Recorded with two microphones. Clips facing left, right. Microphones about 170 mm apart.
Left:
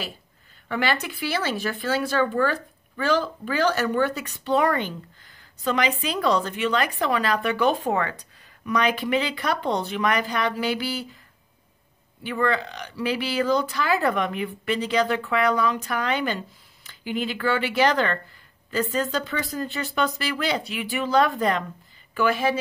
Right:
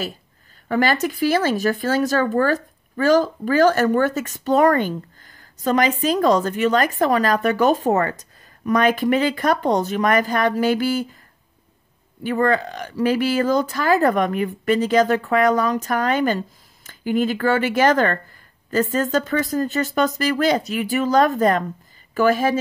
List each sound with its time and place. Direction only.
0.7 s speech: 45° right (ahead or behind)
12.2 s speech: 45° right (ahead or behind)